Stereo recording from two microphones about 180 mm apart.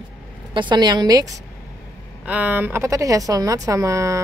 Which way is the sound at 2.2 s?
10° right (ahead or behind).